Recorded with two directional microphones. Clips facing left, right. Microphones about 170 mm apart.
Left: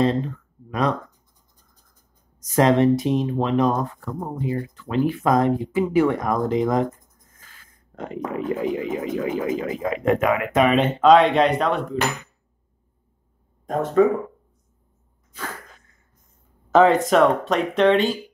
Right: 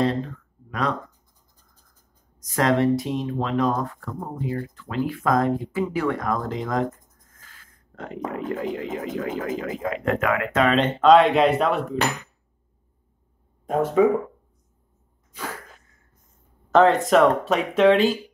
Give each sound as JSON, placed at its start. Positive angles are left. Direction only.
{"t": 0.7, "sound": "speech", "side_deg": 20}
{"t": 2.5, "sound": "speech", "side_deg": 20}
{"t": 7.9, "sound": "speech", "side_deg": 15}
{"t": 11.0, "sound": "speech", "side_deg": 0}
{"t": 13.7, "sound": "speech", "side_deg": -10}
{"t": 16.7, "sound": "speech", "side_deg": 0}